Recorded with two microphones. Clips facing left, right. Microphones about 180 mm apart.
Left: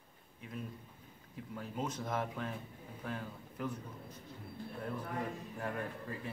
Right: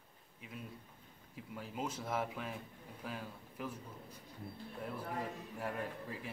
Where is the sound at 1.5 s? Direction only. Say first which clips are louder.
Left 2 dB; 10° right (ahead or behind).